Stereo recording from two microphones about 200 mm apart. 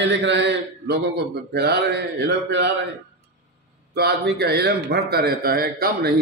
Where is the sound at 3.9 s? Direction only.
55° right (ahead or behind).